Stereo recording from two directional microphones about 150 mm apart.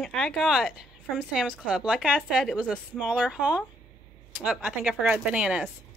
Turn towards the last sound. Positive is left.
turn(degrees=-5)  # may be behind; listen again after turning